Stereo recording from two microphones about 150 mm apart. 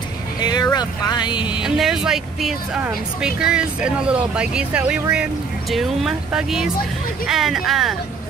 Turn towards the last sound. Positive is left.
turn(degrees=0)  # may be behind; listen again after turning